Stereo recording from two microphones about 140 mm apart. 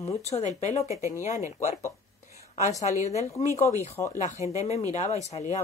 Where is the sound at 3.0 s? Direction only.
50° left (ahead or behind).